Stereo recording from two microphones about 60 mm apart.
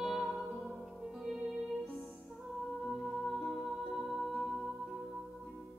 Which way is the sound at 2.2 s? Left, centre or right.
Centre.